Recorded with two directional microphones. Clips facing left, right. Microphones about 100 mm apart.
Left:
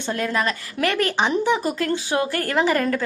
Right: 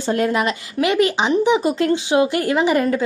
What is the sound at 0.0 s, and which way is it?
Speech, 30° right (ahead or behind).